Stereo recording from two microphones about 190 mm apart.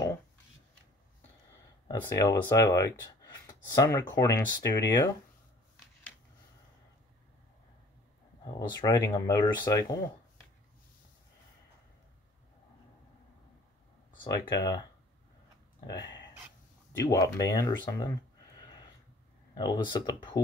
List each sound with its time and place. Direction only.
1.9 s speech: 20° left (ahead or behind)
8.5 s speech: 20° left (ahead or behind)
14.2 s speech: 20° left (ahead or behind)
15.9 s speech: 20° left (ahead or behind)
18.6 s a sound: 20° left (ahead or behind)
19.5 s speech: 20° left (ahead or behind)